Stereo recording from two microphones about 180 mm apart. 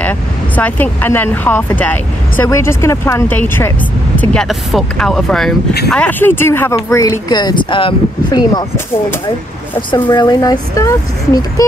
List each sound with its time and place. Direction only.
0.6 s speech: 10° left (ahead or behind)
9.8 s speech: 25° left (ahead or behind)